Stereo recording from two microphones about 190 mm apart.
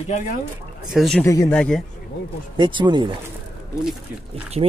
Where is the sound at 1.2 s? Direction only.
15° left (ahead or behind).